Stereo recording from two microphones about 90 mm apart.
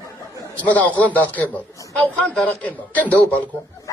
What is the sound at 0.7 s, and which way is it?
A man's voice, 20° left (ahead or behind).